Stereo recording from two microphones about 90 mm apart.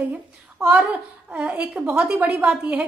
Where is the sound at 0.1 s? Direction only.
10° right (ahead or behind).